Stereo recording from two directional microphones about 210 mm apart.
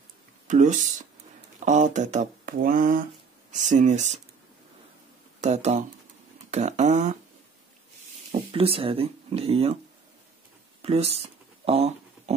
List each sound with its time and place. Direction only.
0.5 s speech: 35° right (ahead or behind)
5.4 s speech: 30° right (ahead or behind)
8.3 s speech: 25° right (ahead or behind)
10.8 s a sound: 30° right (ahead or behind)